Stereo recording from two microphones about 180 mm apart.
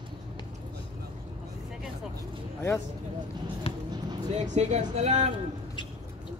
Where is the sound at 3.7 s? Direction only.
30° left (ahead or behind).